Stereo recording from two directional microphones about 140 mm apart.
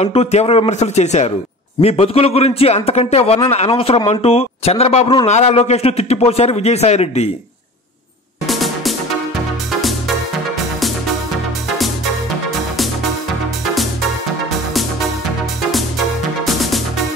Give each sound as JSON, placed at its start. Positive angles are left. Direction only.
{"t": 0.0, "sound": "speech", "side_deg": 50}
{"t": 8.5, "sound": "music", "side_deg": 0}
{"t": 12.4, "sound": "music", "side_deg": 0}